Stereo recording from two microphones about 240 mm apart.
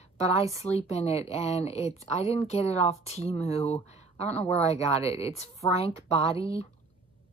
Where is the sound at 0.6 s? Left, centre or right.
Left.